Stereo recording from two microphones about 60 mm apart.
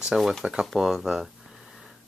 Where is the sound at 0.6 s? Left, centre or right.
Centre.